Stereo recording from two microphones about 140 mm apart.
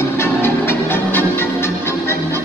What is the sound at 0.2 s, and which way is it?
Music, 15° left (ahead or behind).